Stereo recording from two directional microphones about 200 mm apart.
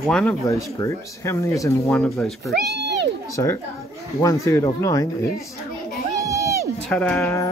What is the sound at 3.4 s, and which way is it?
Speech, 15° left (ahead or behind).